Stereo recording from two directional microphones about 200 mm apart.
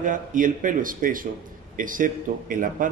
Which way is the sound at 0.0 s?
40° right (ahead or behind).